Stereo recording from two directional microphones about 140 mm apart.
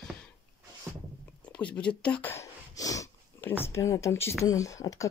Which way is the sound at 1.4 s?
10° left (ahead or behind).